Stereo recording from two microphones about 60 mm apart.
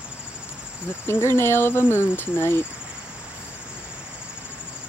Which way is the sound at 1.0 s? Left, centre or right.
Left.